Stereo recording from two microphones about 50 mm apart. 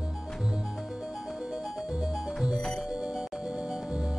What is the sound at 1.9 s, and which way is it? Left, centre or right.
Music, centre.